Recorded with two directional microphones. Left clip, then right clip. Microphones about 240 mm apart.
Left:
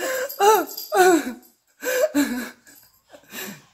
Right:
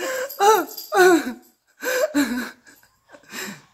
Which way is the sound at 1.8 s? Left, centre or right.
Centre.